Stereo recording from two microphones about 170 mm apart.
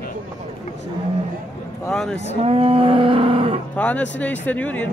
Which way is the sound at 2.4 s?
35° right (ahead or behind).